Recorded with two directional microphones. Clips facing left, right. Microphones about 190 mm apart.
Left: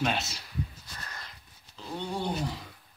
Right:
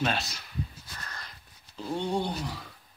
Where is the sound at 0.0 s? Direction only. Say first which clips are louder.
Even; 15° left (ahead or behind).